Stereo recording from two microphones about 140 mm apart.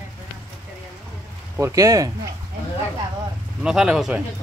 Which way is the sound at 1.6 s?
20° right (ahead or behind).